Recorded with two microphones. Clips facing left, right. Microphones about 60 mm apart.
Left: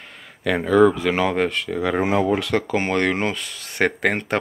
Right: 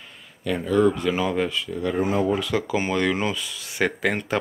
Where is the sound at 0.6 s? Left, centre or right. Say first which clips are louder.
Left 5 dB; left.